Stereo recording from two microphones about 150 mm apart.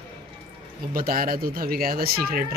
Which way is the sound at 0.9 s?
70° right (ahead or behind).